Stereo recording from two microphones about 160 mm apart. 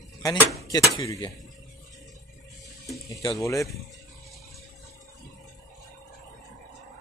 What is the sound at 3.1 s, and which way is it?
Speech, 20° left (ahead or behind).